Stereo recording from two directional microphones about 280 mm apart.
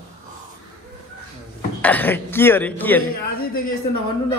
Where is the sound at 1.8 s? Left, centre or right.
Centre.